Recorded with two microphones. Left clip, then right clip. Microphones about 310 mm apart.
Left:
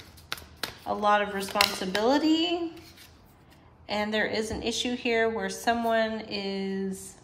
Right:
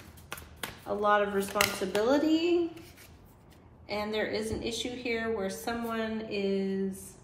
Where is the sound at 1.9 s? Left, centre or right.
Left.